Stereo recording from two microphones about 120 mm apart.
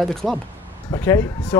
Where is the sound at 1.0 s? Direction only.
20° left (ahead or behind).